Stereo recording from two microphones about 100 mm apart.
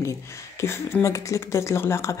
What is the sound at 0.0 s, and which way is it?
Speech, 30° left (ahead or behind).